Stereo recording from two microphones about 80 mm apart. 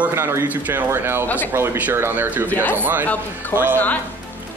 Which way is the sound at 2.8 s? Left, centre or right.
Right.